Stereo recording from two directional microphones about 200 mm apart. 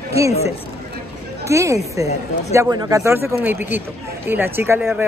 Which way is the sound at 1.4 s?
15° right (ahead or behind).